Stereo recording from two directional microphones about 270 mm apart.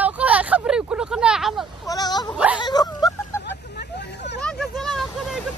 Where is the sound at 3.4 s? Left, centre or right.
Left.